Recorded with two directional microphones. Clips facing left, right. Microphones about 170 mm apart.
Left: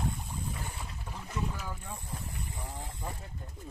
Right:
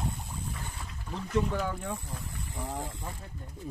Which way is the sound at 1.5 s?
70° right (ahead or behind).